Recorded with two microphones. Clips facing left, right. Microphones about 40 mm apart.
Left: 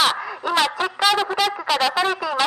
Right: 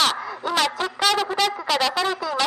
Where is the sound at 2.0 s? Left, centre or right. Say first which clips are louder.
Left 2 dB; left.